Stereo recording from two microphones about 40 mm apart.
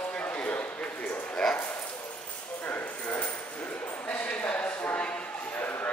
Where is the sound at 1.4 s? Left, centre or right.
Centre.